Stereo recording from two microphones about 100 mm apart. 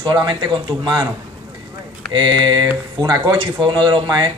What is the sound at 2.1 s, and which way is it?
Speech, 50° right (ahead or behind).